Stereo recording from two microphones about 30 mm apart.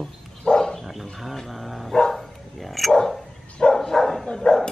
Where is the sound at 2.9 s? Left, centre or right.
Centre.